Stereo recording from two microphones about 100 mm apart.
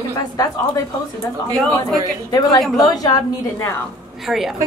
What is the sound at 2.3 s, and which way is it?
A woman's voice, 40° left (ahead or behind).